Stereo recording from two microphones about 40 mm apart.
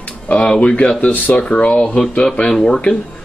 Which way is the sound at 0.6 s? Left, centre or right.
Left.